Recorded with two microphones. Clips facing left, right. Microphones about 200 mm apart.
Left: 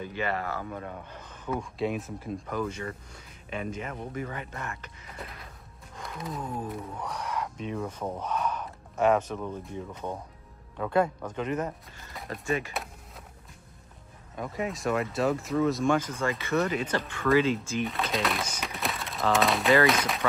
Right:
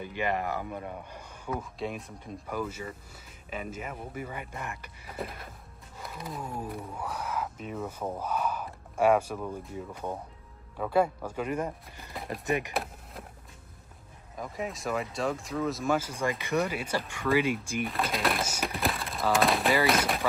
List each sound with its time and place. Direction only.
0.0 s speech: 15° right (ahead or behind)
1.5 s speech: centre (ahead or behind); by 12.7 s 15° right (ahead or behind)
14.3 s speech: centre (ahead or behind)
17.8 s speech: centre (ahead or behind)